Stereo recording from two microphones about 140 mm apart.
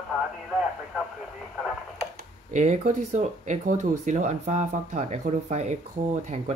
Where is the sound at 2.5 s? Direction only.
60° right (ahead or behind).